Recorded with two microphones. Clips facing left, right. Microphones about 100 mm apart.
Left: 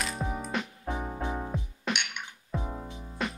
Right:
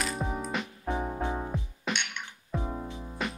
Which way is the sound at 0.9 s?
20° right (ahead or behind).